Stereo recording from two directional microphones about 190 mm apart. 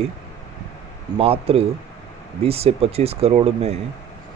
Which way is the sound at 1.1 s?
30° right (ahead or behind).